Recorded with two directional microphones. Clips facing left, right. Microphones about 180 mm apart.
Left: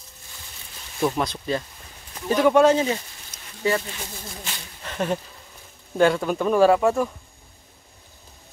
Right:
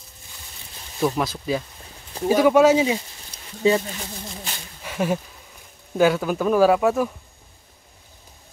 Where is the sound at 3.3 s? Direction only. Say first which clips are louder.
Right 2 dB; 30° right (ahead or behind).